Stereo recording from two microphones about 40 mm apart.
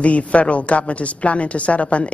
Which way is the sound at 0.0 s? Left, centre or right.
Left.